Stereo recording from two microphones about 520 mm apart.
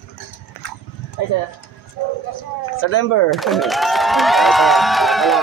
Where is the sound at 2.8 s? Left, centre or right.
Left.